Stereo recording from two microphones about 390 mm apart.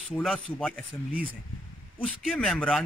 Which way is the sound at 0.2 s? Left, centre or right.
Centre.